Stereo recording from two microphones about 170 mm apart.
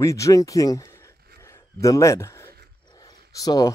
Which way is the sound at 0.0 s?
20° left (ahead or behind).